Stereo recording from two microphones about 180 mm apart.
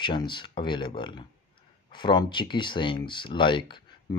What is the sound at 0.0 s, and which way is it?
Speech, 25° left (ahead or behind).